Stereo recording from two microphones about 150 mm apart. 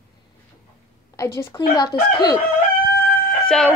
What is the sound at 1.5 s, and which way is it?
Chicken, 30° left (ahead or behind).